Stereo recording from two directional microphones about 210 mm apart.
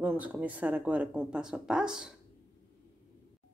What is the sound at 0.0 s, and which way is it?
Speech, 10° right (ahead or behind).